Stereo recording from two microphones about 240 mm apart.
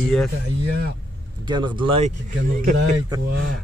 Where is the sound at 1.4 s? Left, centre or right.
Centre.